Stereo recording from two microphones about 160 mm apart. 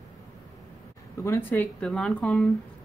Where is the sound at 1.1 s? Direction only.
15° left (ahead or behind).